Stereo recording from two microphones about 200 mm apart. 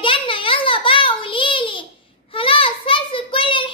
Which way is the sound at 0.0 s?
25° left (ahead or behind).